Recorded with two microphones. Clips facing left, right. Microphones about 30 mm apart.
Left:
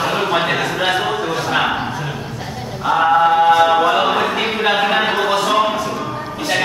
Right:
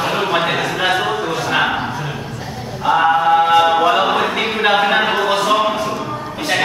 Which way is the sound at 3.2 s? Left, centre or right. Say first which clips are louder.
Even; centre.